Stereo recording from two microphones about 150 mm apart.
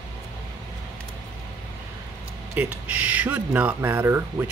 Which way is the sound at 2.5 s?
10° right (ahead or behind).